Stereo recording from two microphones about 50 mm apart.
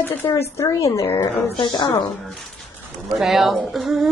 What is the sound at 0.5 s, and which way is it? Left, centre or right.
Speech, left.